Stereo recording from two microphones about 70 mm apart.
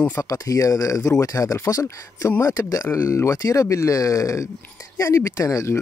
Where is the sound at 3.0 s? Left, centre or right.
Left.